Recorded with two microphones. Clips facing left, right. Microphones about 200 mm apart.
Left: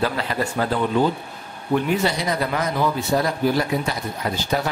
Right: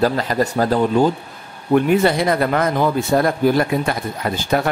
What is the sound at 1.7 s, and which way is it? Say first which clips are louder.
A man's voice: right 6 dB; 55° right (ahead or behind).